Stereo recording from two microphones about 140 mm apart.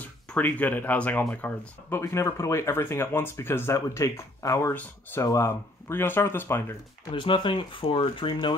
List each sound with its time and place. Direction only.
0.0 s speech: 10° left (ahead or behind)
7.1 s speech: 35° left (ahead or behind)